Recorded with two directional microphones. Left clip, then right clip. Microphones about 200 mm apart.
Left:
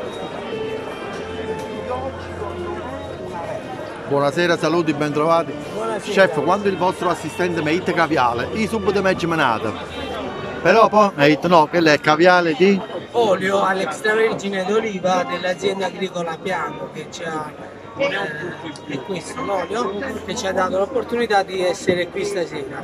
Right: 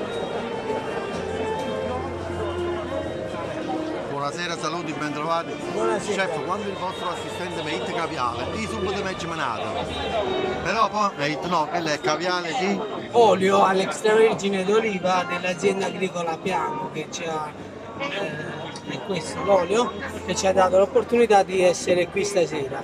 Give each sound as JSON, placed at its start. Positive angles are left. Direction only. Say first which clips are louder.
{"t": 4.2, "sound": "speech", "louder": "left 12 dB", "side_deg": 40}
{"t": 10.6, "sound": "a man's voice", "louder": "left 11 dB", "side_deg": 40}
{"t": 13.1, "sound": "speech", "louder": "even", "side_deg": -15}
{"t": 19.5, "sound": "speech", "louder": "right 3 dB", "side_deg": -15}